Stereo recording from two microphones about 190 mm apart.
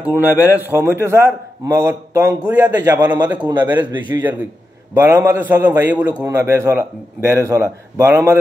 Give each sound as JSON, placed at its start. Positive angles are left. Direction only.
{"t": 0.1, "sound": "a man's voice", "side_deg": 15}
{"t": 0.5, "sound": "a man's voice", "side_deg": -10}
{"t": 4.2, "sound": "a man's voice", "side_deg": -10}